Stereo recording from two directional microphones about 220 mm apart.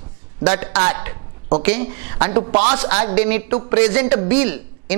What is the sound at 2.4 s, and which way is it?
Speech, 30° right (ahead or behind).